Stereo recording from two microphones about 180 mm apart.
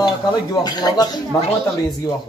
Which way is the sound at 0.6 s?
20° left (ahead or behind).